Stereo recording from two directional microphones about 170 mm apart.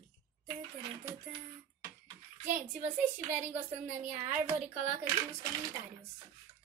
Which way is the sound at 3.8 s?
45° right (ahead or behind).